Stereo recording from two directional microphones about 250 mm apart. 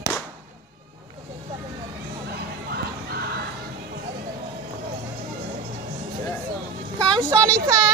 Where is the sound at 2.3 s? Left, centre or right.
Right.